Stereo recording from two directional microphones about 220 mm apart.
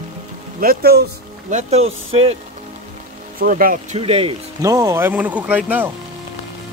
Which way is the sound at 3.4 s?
40° right (ahead or behind).